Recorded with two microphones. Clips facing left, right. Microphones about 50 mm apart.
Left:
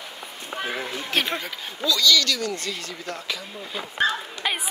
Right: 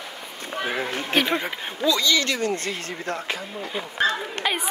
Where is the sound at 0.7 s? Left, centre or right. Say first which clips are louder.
Right 3 dB; right.